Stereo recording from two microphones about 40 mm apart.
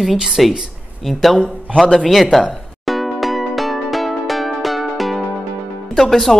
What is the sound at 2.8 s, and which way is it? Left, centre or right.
Music, centre.